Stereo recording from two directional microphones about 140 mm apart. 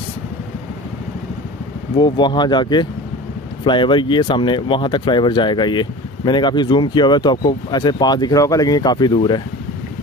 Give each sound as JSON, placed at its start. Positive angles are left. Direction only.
{"t": 2.0, "sound": "speech", "side_deg": 35}